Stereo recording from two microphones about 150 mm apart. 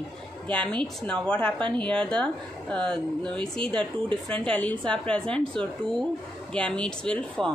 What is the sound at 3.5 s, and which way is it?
A woman's voice, 5° left (ahead or behind).